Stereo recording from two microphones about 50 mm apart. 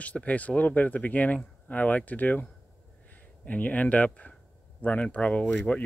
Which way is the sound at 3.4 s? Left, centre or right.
Left.